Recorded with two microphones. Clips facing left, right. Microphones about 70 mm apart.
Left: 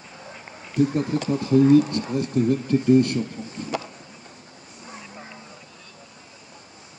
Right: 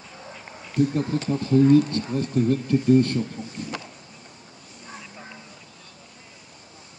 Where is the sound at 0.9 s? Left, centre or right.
Left.